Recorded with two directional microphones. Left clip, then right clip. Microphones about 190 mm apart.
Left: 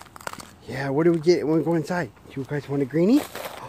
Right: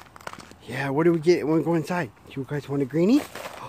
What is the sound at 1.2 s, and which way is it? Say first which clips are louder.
Speech: left 1 dB; 10° right (ahead or behind).